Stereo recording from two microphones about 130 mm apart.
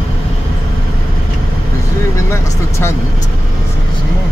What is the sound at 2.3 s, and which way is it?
Speech, 20° left (ahead or behind).